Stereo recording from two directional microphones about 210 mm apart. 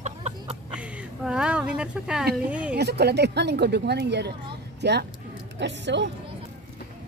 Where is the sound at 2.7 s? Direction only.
50° right (ahead or behind).